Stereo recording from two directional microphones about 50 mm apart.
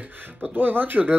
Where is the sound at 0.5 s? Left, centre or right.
Right.